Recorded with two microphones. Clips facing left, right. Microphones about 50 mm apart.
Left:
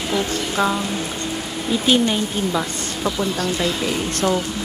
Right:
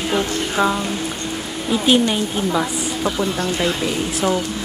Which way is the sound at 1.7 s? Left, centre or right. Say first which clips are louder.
Right 1 dB; centre.